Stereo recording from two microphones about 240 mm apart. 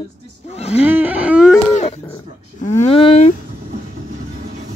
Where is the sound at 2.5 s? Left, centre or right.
Left.